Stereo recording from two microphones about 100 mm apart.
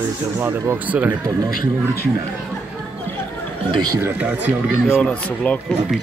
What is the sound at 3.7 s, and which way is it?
Speech, 45° right (ahead or behind).